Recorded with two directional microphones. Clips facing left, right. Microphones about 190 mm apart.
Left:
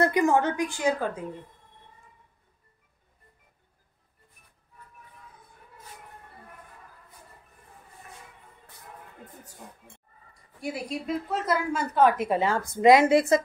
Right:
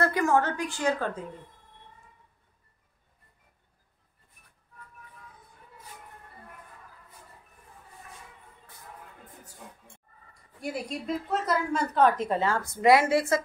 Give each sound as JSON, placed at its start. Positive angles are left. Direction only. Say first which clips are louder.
{"t": 0.0, "sound": "a woman's voice", "louder": "left 2 dB", "side_deg": 15}
{"t": 10.6, "sound": "a woman's voice", "louder": "left 1 dB", "side_deg": 0}